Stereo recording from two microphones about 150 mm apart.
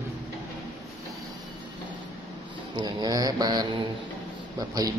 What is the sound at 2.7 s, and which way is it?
Speech, 30° right (ahead or behind).